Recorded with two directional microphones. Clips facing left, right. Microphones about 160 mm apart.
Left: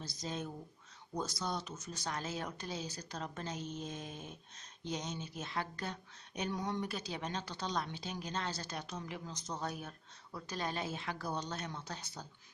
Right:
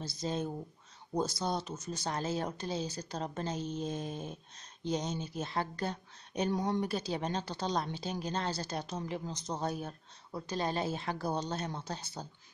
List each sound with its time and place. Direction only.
0.0 s speech: 30° right (ahead or behind)